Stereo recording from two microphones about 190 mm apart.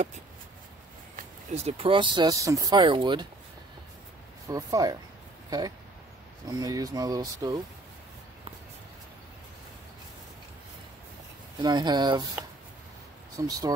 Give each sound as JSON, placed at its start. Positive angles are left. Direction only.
{"t": 1.1, "sound": "speech", "side_deg": -35}
{"t": 4.5, "sound": "speech", "side_deg": -20}
{"t": 6.4, "sound": "speech", "side_deg": -20}
{"t": 11.6, "sound": "speech", "side_deg": -25}
{"t": 13.4, "sound": "speech", "side_deg": -20}